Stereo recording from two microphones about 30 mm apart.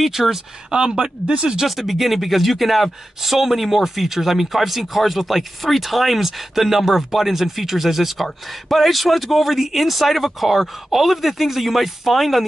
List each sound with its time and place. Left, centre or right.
0.0 s speech: centre
0.7 s speech: right
1.8 s speech: centre